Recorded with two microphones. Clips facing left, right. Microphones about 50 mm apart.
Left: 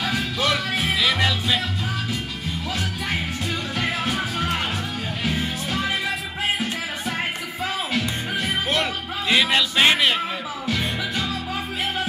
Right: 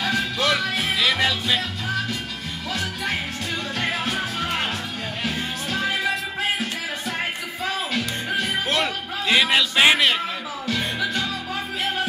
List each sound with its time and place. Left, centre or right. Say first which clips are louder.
0.0 s music: right 1 dB; centre
3.8 s music: even; centre
7.6 s music: left 1 dB; centre
8.7 s music: even; centre